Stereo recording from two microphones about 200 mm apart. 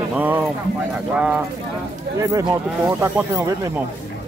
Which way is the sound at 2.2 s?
15° right (ahead or behind).